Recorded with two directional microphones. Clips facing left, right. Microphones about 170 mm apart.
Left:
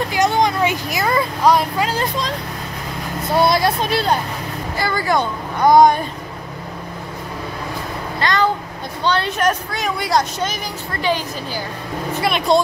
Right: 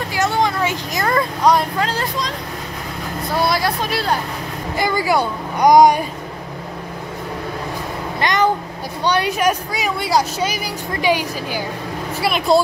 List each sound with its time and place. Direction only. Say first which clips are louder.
0.1 s a sound: left 1 dB; 15° left (ahead or behind)
0.9 s speech: even; 5° left (ahead or behind)
3.3 s speech: left 3 dB; 25° left (ahead or behind)
4.7 s speech: right 1 dB; 15° right (ahead or behind)
8.2 s a child's voice: right 1 dB; 20° right (ahead or behind); by 12.6 s centre (ahead or behind)